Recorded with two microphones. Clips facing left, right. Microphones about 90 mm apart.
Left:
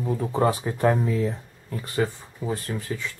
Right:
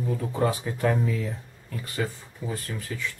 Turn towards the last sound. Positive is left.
turn(degrees=30)  # may be behind; listen again after turning